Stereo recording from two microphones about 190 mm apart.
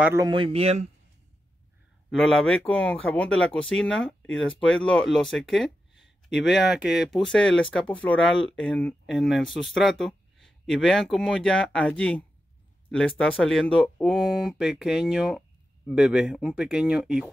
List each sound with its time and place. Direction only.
0.0 s speech: 15° right (ahead or behind)
0.3 s speech: 30° right (ahead or behind)
2.0 s speech: centre (ahead or behind)